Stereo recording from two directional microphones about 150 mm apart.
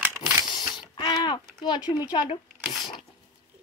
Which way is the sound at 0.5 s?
30° left (ahead or behind).